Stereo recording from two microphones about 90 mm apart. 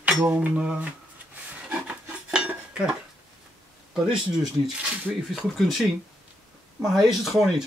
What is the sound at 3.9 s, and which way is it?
Speech, 5° right (ahead or behind).